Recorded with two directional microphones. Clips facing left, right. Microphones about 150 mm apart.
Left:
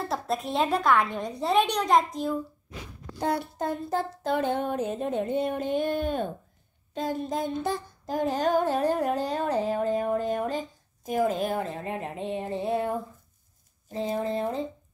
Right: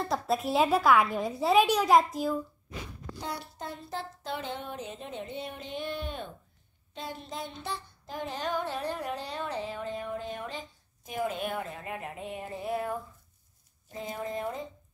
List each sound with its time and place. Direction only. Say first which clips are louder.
0.1 s a woman's voice: right 2 dB; centre (ahead or behind)
3.2 s child singing: left 11 dB; 55° left (ahead or behind); by 13.0 s 25° left (ahead or behind)
13.9 s speech: left 7 dB; 30° left (ahead or behind)